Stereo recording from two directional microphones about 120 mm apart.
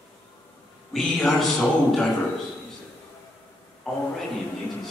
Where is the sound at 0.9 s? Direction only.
Centre (ahead or behind).